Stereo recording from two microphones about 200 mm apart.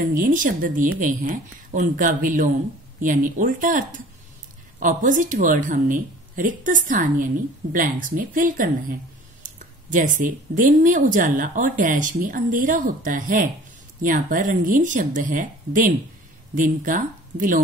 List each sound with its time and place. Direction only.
0.1 s speech: 40° right (ahead or behind)